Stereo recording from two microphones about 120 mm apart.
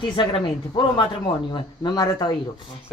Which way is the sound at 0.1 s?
40° left (ahead or behind).